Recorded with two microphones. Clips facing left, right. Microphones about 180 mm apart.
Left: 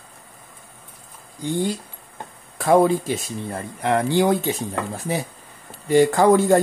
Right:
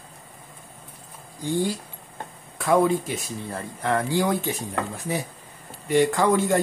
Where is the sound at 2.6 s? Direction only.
35° left (ahead or behind).